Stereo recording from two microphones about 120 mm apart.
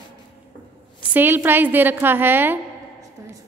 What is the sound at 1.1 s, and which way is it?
A woman's voice, 15° right (ahead or behind).